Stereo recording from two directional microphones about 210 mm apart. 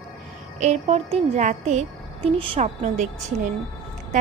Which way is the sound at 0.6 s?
30° right (ahead or behind).